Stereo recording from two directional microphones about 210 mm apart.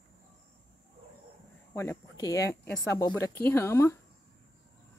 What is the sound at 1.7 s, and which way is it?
Speech, 10° left (ahead or behind).